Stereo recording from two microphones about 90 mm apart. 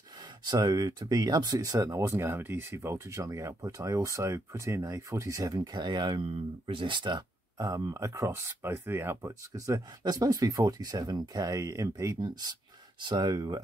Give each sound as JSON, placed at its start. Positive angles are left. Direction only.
{"t": 0.5, "sound": "speech", "side_deg": -50}
{"t": 7.5, "sound": "speech", "side_deg": -40}
{"t": 10.0, "sound": "speech", "side_deg": -45}
{"t": 12.2, "sound": "speech", "side_deg": -50}